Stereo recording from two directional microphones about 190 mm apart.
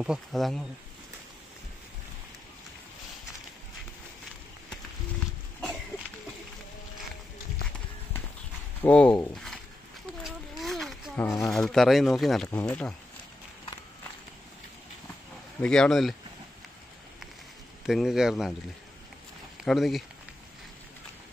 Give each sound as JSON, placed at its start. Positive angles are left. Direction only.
{"t": 0.0, "sound": "speech", "side_deg": 0}
{"t": 8.8, "sound": "speech", "side_deg": 5}
{"t": 10.2, "sound": "boat", "side_deg": 0}
{"t": 11.2, "sound": "speech", "side_deg": 20}
{"t": 11.5, "sound": "speech", "side_deg": 0}
{"t": 15.6, "sound": "speech", "side_deg": 5}
{"t": 17.8, "sound": "speech", "side_deg": 0}
{"t": 19.6, "sound": "speech", "side_deg": 0}